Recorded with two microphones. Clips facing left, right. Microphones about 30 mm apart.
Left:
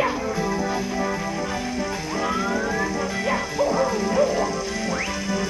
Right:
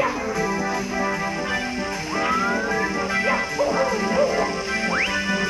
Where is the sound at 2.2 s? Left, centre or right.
Right.